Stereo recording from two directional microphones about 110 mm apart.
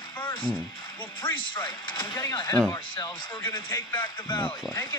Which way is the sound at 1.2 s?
45° left (ahead or behind).